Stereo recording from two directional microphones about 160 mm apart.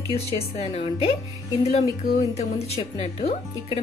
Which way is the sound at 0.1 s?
40° left (ahead or behind).